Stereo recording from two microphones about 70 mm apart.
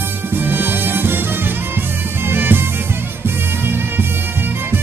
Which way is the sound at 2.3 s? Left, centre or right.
Right.